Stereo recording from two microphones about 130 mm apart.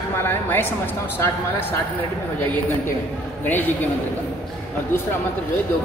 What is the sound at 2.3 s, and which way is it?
Speech, 15° left (ahead or behind).